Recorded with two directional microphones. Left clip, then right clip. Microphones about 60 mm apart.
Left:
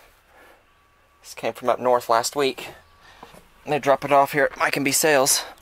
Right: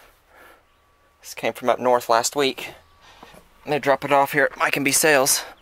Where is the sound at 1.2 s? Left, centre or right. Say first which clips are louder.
Right 2 dB; right.